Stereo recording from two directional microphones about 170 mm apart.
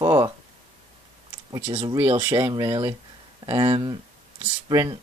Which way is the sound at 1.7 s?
25° right (ahead or behind).